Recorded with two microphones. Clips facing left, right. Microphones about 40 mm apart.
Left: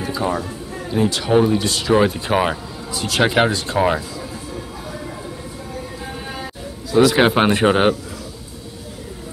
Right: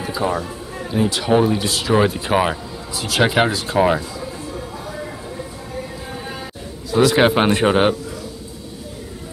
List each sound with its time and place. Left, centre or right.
0.0 s speech: centre
6.9 s a man's voice: centre